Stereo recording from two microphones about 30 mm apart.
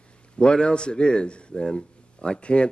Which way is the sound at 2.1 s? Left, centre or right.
Left.